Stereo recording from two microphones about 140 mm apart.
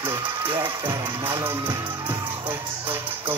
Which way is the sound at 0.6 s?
25° right (ahead or behind).